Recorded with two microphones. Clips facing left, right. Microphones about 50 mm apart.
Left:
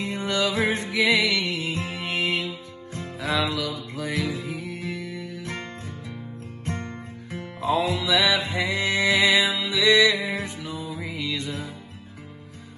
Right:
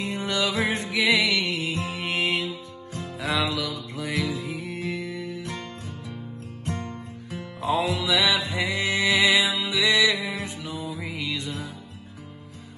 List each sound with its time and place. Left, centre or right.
0.0 s music: left
2.0 s music: right
2.4 s music: left
3.9 s music: right
4.2 s music: left
4.6 s music: right
5.1 s music: left
6.6 s music: left
9.6 s music: right
9.8 s music: left
11.0 s music: right
11.3 s music: left